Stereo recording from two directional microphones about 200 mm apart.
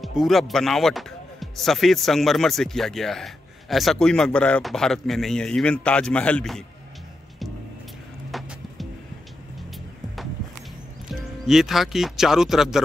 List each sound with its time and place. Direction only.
0.0 s speech: centre (ahead or behind)
8.3 s music: centre (ahead or behind)
11.1 s speech: centre (ahead or behind)